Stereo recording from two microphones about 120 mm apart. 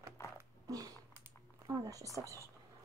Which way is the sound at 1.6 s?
30° right (ahead or behind).